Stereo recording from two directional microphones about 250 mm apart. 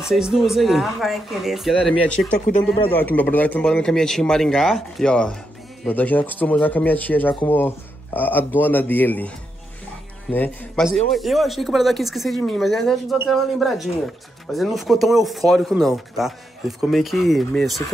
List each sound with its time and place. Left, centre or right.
0.0 s speech: centre
2.3 s speech: left
2.9 s speech: centre
10.3 s speech: centre